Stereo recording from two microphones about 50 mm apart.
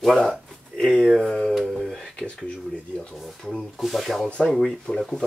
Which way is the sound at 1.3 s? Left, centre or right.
Centre.